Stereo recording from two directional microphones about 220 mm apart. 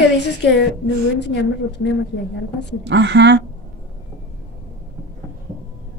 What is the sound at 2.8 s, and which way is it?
Speech, 50° right (ahead or behind).